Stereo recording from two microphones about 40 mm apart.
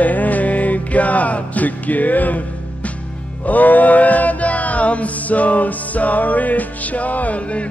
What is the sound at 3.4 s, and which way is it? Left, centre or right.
Music, left.